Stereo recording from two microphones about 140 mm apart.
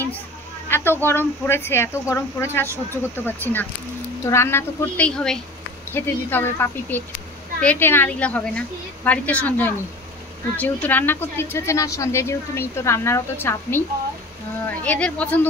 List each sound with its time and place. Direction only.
0.7 s speech: 15° left (ahead or behind)
5.9 s speech: 15° left (ahead or behind)